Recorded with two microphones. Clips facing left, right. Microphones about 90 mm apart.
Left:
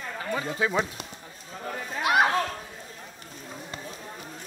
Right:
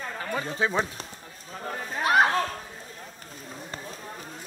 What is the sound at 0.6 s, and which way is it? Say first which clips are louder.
Speech: right 1 dB; 30° right (ahead or behind).